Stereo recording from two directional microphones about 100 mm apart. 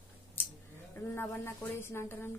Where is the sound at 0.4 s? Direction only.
25° left (ahead or behind).